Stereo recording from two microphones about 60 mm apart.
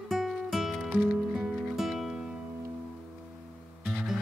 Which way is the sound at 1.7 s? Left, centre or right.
Centre.